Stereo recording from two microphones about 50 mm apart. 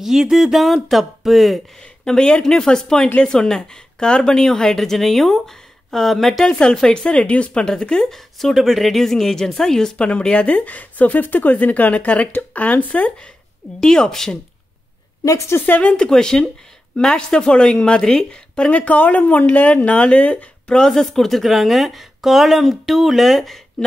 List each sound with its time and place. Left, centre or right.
0.0 s a woman's voice: centre
1.8 s a woman's voice: centre
6.5 s a woman's voice: centre
9.9 s speech: left
13.7 s a woman's voice: centre
15.6 s speech: left
15.9 s a woman's voice: centre
18.7 s speech: left
20.7 s a woman's voice: centre